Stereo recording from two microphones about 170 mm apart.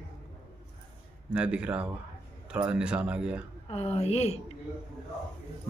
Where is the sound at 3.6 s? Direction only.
40° left (ahead or behind).